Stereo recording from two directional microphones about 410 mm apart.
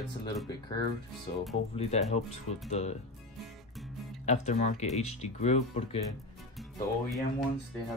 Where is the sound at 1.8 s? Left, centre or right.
Centre.